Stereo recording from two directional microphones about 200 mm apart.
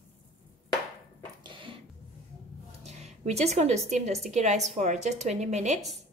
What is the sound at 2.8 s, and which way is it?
Speech, 35° right (ahead or behind).